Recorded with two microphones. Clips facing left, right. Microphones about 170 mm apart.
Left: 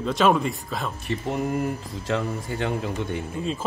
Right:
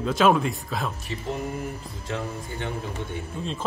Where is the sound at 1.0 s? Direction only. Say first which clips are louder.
Left 4 dB; 65° left (ahead or behind).